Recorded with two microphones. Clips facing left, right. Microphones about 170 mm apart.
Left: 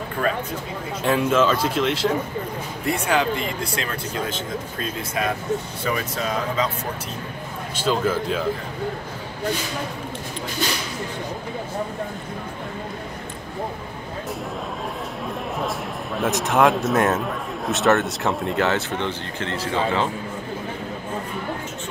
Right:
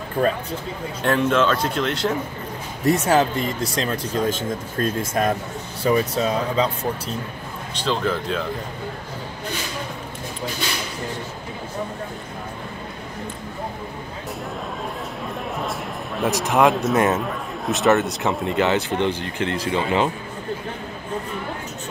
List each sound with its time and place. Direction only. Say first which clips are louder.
1.0 s a man's voice: even; centre (ahead or behind)
2.8 s speech: right 4 dB; 40° right (ahead or behind)
5.9 s speech: right 6 dB; 35° right (ahead or behind)
7.7 s speech: left 1 dB; 5° left (ahead or behind)
15.2 s a sound: left 1 dB; centre (ahead or behind)
16.2 s a man's voice: right 1 dB; centre (ahead or behind)
18.9 s speech: right 4 dB; 15° right (ahead or behind)